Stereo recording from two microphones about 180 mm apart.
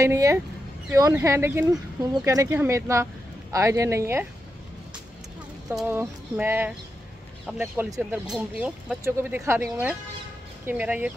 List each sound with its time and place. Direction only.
0.0 s speech: 15° right (ahead or behind)
5.7 s speech: 5° right (ahead or behind)